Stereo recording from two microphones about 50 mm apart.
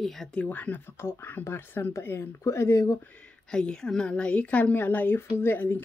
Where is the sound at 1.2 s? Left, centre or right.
Left.